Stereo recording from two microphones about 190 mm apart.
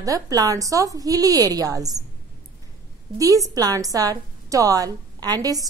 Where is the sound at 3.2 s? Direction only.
20° right (ahead or behind).